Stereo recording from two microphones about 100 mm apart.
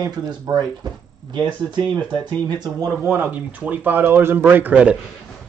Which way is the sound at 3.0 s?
20° right (ahead or behind).